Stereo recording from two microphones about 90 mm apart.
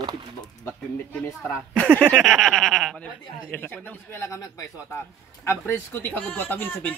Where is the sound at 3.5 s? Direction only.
20° left (ahead or behind).